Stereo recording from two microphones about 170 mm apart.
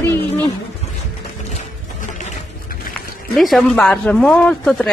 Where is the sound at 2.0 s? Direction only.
45° left (ahead or behind).